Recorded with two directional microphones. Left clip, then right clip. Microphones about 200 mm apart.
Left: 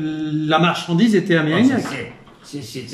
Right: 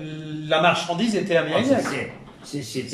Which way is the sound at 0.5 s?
50° left (ahead or behind).